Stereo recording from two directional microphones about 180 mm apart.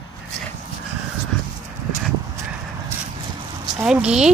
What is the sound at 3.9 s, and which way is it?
Speech, 5° right (ahead or behind).